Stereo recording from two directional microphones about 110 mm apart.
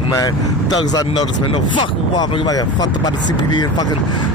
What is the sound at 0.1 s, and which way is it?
Speech, 35° left (ahead or behind).